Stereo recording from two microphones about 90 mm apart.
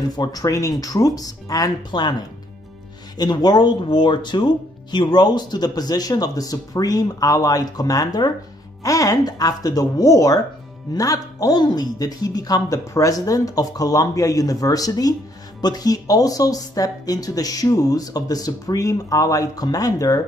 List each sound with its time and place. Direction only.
0.1 s speech: 45° left (ahead or behind)
1.9 s speech: 55° left (ahead or behind)
3.2 s speech: 50° left (ahead or behind)